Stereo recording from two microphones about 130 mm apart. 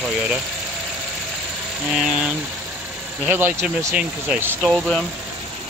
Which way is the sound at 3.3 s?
15° right (ahead or behind).